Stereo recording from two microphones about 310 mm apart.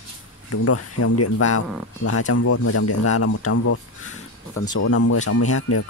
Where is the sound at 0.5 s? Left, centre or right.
Left.